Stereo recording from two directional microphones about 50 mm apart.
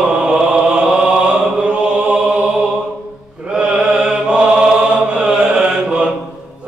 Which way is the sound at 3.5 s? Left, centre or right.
Centre.